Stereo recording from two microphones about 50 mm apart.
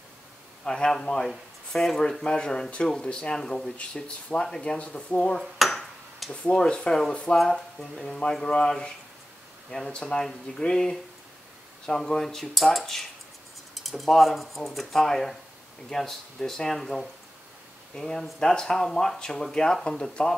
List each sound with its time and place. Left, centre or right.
0.7 s speech: centre
5.6 s dishes: centre
6.4 s speech: centre